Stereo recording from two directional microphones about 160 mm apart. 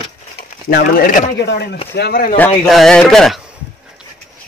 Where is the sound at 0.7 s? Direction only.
65° left (ahead or behind).